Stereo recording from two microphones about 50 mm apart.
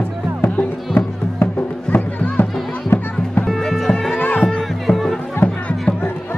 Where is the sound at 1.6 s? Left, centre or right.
Left.